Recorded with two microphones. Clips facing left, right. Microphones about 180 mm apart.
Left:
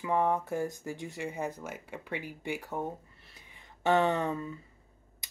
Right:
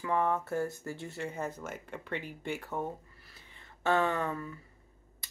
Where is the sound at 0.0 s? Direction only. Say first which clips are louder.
Left 2 dB; 15° left (ahead or behind).